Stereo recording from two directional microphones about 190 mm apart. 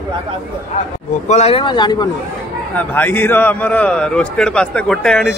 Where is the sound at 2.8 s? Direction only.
10° left (ahead or behind).